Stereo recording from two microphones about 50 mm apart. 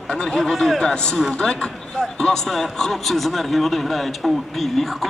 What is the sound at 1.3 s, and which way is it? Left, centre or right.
A man's voice, centre.